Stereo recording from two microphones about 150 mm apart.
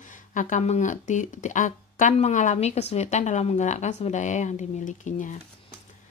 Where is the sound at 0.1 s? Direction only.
60° left (ahead or behind).